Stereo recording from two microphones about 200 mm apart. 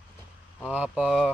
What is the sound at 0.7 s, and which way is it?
Speech, 5° right (ahead or behind).